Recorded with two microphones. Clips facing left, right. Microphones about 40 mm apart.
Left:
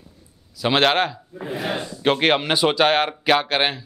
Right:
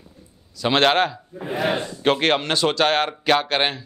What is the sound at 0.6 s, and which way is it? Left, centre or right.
Speech, centre.